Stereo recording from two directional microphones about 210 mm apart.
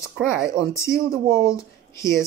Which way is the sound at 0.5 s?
15° left (ahead or behind).